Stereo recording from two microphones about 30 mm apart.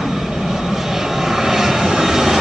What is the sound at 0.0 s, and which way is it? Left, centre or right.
Vehicle, centre.